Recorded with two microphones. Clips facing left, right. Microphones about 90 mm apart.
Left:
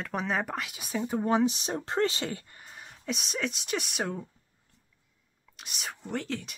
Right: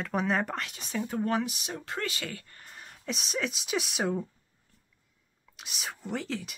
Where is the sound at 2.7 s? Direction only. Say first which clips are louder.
Left 2 dB; centre (ahead or behind).